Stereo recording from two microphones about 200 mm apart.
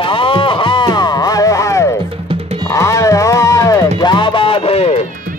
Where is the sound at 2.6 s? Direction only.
15° left (ahead or behind); by 5.0 s 30° left (ahead or behind).